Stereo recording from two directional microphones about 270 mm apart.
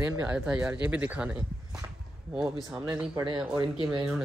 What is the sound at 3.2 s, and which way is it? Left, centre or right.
Speech, centre.